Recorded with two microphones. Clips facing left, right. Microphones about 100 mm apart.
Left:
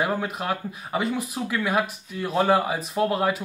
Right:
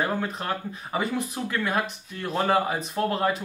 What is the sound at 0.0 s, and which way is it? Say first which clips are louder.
Speech: left 2 dB; 10° left (ahead or behind).